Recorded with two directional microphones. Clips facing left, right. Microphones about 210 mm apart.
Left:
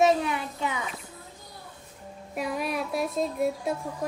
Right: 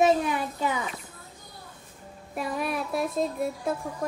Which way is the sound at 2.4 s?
Centre (ahead or behind).